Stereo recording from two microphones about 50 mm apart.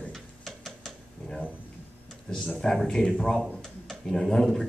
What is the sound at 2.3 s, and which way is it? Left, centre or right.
A man's voice, centre.